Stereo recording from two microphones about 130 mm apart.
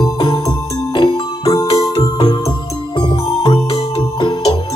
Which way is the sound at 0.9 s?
35° left (ahead or behind).